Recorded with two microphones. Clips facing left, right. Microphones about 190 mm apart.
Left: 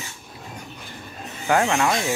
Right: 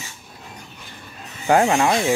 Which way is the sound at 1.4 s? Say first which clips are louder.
Right 4 dB; 25° right (ahead or behind).